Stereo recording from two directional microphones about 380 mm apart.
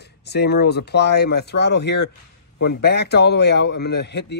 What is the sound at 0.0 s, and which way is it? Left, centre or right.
A man's voice, left.